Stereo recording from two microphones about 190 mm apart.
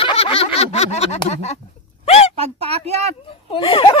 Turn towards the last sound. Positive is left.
turn(degrees=25)  # may be behind; listen again after turning